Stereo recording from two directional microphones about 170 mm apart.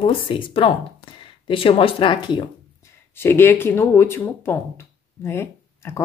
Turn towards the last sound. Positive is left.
turn(degrees=15)  # may be behind; listen again after turning